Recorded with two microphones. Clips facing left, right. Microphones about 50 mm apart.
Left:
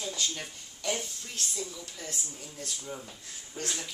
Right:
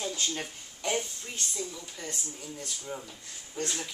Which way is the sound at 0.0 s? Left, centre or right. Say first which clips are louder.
Right 2 dB; right.